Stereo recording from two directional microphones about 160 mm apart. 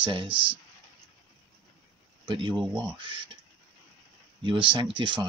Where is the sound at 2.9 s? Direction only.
30° right (ahead or behind).